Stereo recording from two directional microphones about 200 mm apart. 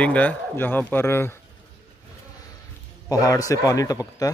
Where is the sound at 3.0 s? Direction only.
15° left (ahead or behind).